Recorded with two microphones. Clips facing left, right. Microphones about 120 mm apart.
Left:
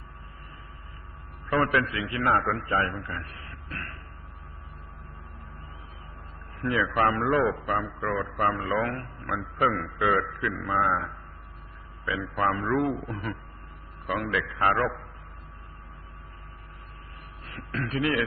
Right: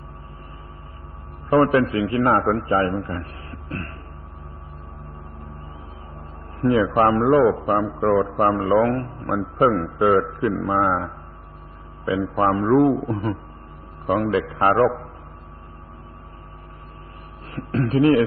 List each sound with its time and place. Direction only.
1.5 s a man's voice: 35° right (ahead or behind)
6.6 s a man's voice: 35° right (ahead or behind)
17.5 s a sound: 35° right (ahead or behind)